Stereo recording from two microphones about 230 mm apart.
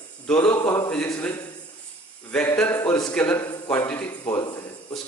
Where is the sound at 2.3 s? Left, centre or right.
Centre.